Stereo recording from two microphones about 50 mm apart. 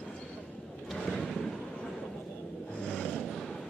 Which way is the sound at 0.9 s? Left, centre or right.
Centre.